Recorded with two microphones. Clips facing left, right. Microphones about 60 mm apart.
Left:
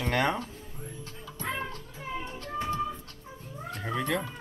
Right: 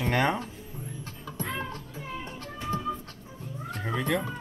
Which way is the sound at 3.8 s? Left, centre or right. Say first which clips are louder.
Right 2 dB; centre.